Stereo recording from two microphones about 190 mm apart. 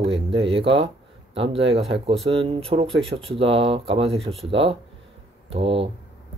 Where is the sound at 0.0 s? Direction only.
30° right (ahead or behind).